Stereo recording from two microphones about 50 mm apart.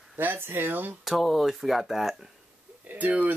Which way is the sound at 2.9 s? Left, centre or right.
Right.